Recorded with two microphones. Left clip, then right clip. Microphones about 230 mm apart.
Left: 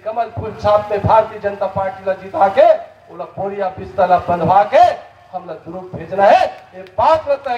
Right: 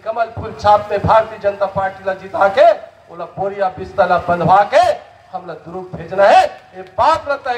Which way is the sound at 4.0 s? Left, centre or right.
Right.